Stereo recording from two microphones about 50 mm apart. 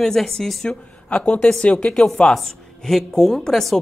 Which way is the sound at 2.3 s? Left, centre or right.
Centre.